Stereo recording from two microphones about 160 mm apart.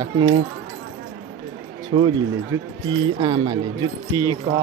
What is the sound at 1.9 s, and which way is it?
Speech, 45° right (ahead or behind).